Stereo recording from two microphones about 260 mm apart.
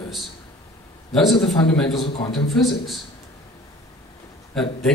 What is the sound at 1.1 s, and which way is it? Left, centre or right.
Speech, centre.